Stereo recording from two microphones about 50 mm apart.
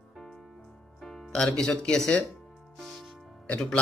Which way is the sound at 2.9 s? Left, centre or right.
Centre.